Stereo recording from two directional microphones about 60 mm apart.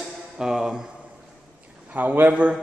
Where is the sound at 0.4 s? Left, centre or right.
Centre.